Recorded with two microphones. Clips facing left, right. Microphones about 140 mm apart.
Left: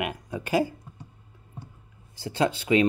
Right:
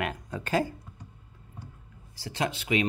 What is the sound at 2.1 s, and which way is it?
Speech, 25° left (ahead or behind).